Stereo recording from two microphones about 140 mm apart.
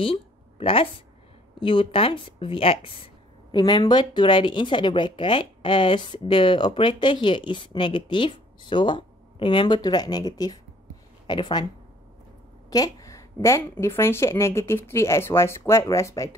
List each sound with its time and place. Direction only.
0.0 s a sound: 40° left (ahead or behind)
1.6 s speech: 35° left (ahead or behind)
3.5 s speech: 30° left (ahead or behind)
12.6 s a woman's voice: 25° left (ahead or behind)